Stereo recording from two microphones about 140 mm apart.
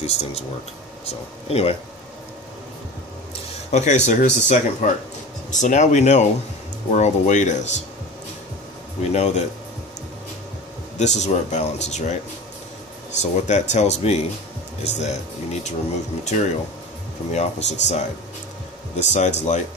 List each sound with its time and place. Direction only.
0.0 s speech: 50° left (ahead or behind)
3.7 s speech: 55° left (ahead or behind)
9.0 s speech: 50° left (ahead or behind)
11.0 s speech: 55° left (ahead or behind)
13.2 s speech: 55° left (ahead or behind)
16.3 s speech: 60° left (ahead or behind)